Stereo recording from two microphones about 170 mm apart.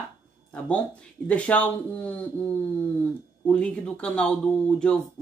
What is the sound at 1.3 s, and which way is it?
Speech, 10° left (ahead or behind).